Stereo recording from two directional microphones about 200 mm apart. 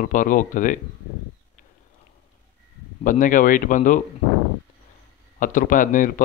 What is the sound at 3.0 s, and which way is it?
Speech, 40° left (ahead or behind).